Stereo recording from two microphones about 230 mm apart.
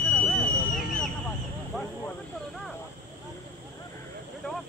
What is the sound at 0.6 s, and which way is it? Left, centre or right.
Vehicle, left.